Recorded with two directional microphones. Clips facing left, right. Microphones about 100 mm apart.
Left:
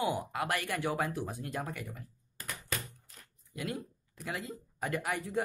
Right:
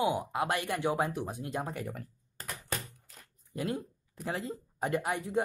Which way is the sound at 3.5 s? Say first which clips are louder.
Right 4 dB; 30° right (ahead or behind).